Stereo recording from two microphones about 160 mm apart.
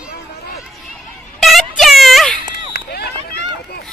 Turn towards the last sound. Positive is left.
turn(degrees=90)